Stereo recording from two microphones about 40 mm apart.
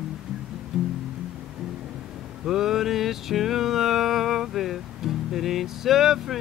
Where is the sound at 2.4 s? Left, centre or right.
Centre.